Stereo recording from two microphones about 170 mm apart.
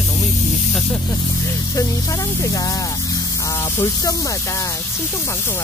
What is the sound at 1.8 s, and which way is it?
Speech, 20° left (ahead or behind).